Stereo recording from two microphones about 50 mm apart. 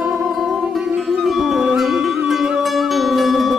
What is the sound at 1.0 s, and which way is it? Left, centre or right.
Music, centre.